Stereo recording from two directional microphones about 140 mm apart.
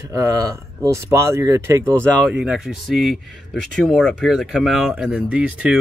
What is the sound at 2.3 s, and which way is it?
Speech, 5° right (ahead or behind).